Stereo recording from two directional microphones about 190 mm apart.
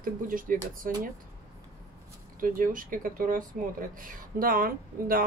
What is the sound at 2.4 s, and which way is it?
Speech, 45° right (ahead or behind).